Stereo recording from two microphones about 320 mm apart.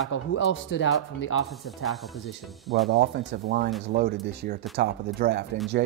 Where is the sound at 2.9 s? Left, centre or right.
Right.